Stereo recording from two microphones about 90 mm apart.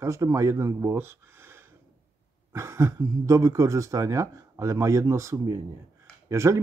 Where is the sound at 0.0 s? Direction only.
35° right (ahead or behind).